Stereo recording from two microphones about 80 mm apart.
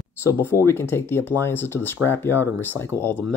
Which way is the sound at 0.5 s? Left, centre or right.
Left.